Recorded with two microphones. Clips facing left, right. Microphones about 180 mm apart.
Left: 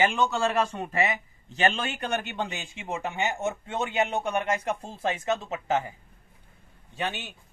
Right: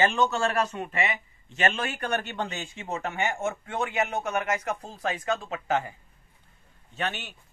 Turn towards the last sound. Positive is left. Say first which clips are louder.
# even
turn(degrees=15)  # may be behind; listen again after turning